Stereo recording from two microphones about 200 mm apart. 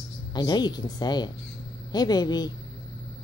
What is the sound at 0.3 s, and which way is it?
A woman's voice, 20° left (ahead or behind).